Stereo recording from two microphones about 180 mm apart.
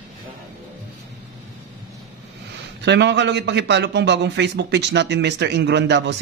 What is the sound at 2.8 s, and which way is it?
A man's voice, 75° right (ahead or behind).